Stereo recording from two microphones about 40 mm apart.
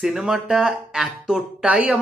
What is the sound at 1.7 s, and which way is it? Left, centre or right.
Speech, right.